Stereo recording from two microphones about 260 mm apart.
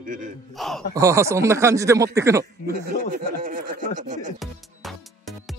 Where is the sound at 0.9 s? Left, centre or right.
Centre.